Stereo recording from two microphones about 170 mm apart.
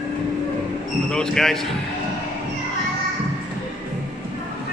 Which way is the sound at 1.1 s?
5° left (ahead or behind).